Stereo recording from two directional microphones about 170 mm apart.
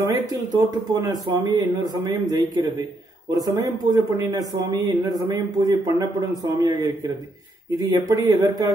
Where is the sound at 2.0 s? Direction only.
20° right (ahead or behind).